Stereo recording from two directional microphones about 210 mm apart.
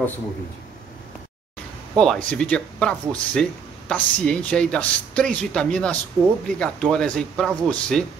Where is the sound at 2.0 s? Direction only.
5° left (ahead or behind).